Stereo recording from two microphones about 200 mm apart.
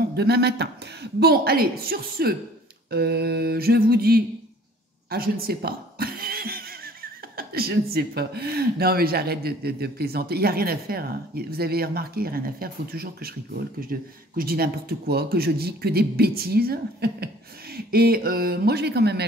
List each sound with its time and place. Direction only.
0.1 s speech: 55° right (ahead or behind)